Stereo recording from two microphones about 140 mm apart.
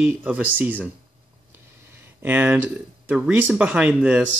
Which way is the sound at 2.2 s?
15° right (ahead or behind).